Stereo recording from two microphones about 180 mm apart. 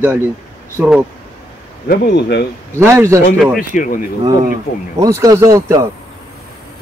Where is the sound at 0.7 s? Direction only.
5° right (ahead or behind).